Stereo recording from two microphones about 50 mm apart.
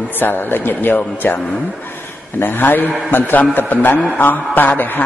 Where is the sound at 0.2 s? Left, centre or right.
Left.